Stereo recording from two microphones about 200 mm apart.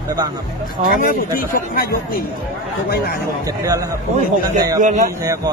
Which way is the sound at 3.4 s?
15° right (ahead or behind).